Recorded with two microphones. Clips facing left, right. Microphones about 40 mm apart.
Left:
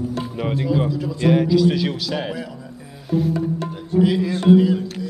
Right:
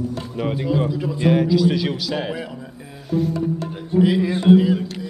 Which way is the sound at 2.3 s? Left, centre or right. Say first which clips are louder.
Right 1 dB; right.